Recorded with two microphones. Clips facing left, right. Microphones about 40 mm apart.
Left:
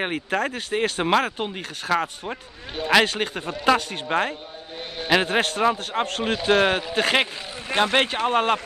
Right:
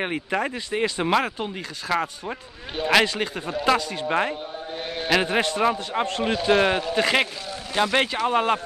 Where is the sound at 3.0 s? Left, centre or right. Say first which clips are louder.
Left 1 dB; left.